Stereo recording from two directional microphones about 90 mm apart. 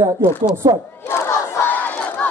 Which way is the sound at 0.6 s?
40° right (ahead or behind).